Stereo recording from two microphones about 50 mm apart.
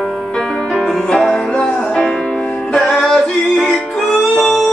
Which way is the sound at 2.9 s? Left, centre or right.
Centre.